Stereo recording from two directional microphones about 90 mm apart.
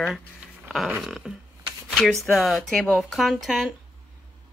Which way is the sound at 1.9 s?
5° left (ahead or behind).